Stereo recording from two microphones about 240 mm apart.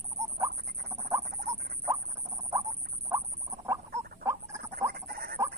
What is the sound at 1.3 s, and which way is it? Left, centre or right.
Rodents, right.